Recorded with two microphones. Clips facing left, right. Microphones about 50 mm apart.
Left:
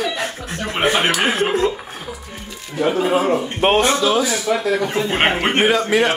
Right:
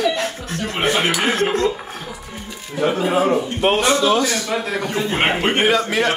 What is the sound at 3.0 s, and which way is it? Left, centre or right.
Speech, centre.